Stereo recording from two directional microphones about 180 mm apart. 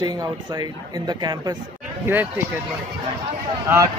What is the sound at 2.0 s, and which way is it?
Speech, 10° right (ahead or behind).